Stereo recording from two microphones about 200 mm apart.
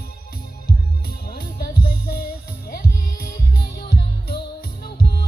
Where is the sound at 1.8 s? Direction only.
50° left (ahead or behind).